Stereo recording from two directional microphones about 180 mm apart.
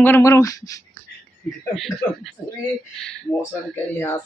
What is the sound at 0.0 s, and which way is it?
Speech, 10° left (ahead or behind).